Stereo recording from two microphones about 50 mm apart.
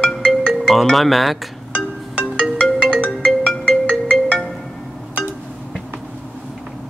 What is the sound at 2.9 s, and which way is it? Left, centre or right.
Music, left.